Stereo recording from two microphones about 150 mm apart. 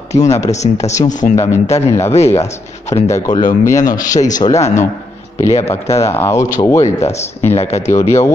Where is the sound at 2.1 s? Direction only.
45° left (ahead or behind).